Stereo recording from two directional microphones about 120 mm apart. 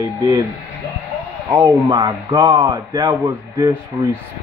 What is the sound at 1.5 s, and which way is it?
Speech, 30° right (ahead or behind).